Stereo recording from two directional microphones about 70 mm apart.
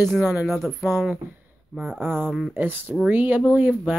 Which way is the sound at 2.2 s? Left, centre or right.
Centre.